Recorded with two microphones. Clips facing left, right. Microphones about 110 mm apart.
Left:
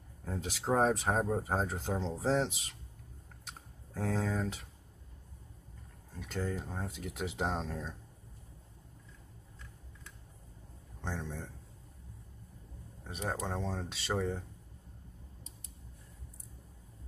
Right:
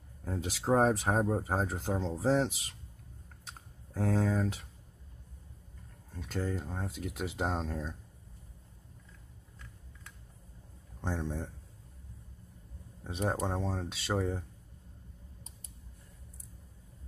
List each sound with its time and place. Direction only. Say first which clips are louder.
0.2 s speech: right 2 dB; 5° right (ahead or behind)
3.9 s speech: right 4 dB; 5° right (ahead or behind)
6.2 s speech: right 1 dB; centre (ahead or behind)
11.0 s speech: right 4 dB; 20° right (ahead or behind)
13.5 s speech: right 2 dB; 10° right (ahead or behind)